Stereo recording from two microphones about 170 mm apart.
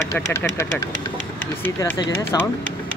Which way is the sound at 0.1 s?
15° left (ahead or behind).